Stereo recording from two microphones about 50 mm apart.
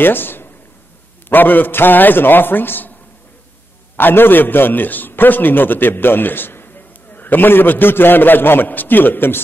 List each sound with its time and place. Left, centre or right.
0.0 s a man's voice: left
3.9 s a man's voice: left